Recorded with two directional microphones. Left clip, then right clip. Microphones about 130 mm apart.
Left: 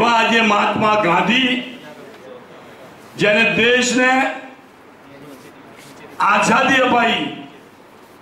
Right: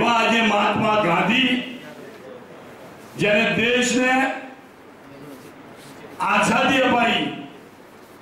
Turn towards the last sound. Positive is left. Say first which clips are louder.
# left 4 dB
turn(degrees=35)  # may be behind; listen again after turning